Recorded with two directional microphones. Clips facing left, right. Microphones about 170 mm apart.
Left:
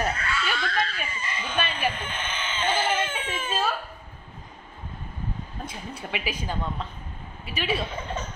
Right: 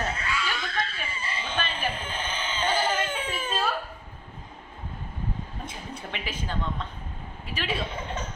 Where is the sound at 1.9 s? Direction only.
30° right (ahead or behind).